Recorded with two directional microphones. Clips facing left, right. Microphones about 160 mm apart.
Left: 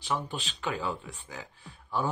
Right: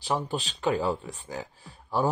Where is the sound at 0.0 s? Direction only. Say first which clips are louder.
Right 4 dB; 35° right (ahead or behind).